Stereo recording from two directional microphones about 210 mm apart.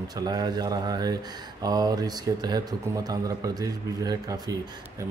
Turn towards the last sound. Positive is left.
turn(degrees=-15)  # may be behind; listen again after turning